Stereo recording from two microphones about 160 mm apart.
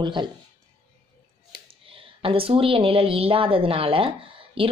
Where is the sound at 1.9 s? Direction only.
35° right (ahead or behind).